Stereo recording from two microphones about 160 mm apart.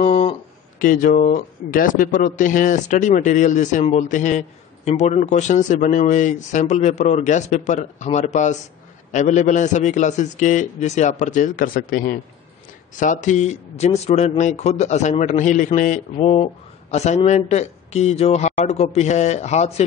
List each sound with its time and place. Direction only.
0.0 s a sound: 45° left (ahead or behind)
0.7 s speech: 55° left (ahead or behind)
12.9 s speech: 50° left (ahead or behind)